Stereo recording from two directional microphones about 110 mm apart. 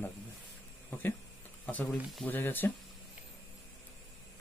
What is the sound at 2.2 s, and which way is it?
Speech, 15° left (ahead or behind).